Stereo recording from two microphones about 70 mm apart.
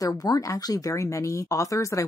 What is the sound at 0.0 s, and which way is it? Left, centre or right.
Speech, left.